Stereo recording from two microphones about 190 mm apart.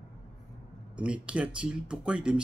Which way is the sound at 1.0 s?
5° right (ahead or behind).